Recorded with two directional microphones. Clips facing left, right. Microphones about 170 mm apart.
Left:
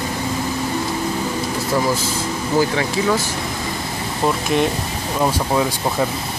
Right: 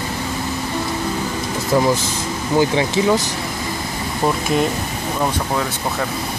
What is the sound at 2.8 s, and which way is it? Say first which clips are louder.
Speech: right 2 dB; 20° right (ahead or behind).